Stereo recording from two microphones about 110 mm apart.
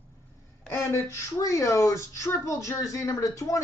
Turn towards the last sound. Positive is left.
turn(degrees=30)  # may be behind; listen again after turning